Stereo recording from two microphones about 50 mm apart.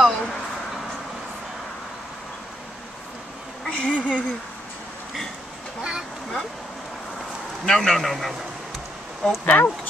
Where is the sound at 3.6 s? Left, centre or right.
Centre.